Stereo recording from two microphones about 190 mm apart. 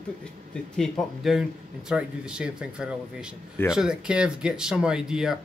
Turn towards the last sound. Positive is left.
turn(degrees=-5)  # may be behind; listen again after turning